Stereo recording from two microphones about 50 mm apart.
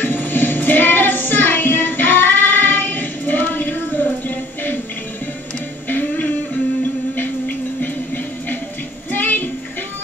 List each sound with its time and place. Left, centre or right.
0.0 s child singing: left
5.9 s music: left